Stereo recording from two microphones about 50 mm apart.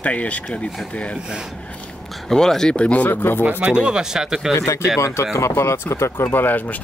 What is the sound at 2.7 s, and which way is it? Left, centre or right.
Speech, left.